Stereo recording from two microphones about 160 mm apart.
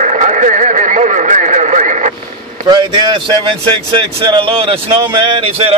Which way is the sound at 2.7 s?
25° right (ahead or behind).